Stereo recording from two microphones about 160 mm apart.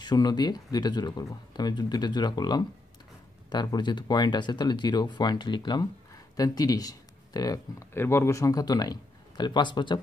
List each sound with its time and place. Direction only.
0.0 s speech: 25° left (ahead or behind)